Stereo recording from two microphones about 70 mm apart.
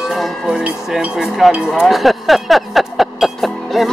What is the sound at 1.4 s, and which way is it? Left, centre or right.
Speech, centre.